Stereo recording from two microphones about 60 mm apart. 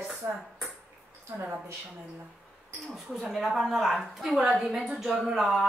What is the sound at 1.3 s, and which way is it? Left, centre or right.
Speech, right.